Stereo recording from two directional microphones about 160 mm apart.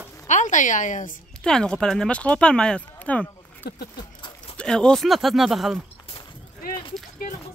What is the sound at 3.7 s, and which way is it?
Speech, 85° left.